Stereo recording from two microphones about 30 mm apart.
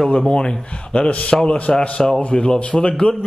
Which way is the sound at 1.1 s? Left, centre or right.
Left.